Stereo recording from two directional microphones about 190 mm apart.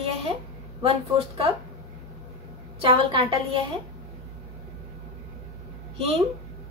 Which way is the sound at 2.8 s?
30° right (ahead or behind).